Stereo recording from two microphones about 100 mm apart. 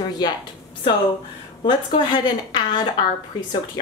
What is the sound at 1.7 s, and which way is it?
Speech, 50° left (ahead or behind).